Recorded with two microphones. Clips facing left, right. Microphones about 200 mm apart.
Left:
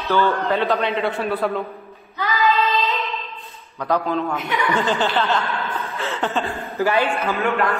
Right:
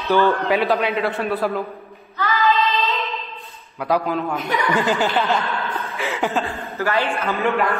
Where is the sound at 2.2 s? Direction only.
10° left (ahead or behind).